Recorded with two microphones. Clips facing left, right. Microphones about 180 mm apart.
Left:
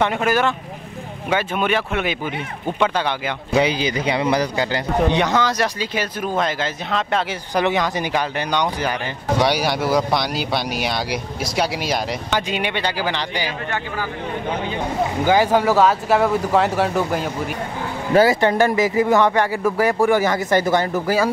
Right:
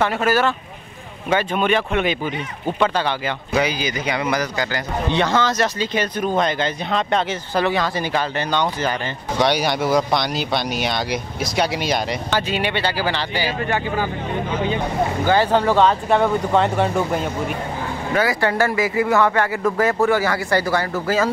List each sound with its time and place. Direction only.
0.0 s speech: 15° left (ahead or behind)
3.5 s a man's voice: 25° left (ahead or behind)
5.1 s speech: 15° left (ahead or behind)
7.5 s speech: 15° left (ahead or behind)
12.4 s speech: 15° left (ahead or behind)
15.2 s speech: 10° left (ahead or behind)
18.1 s speech: 25° left (ahead or behind)